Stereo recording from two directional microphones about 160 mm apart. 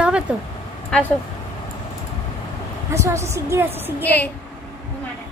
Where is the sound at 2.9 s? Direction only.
15° right (ahead or behind).